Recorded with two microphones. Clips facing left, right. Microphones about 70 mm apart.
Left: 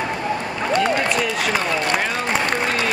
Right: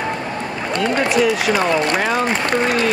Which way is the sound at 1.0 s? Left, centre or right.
Centre.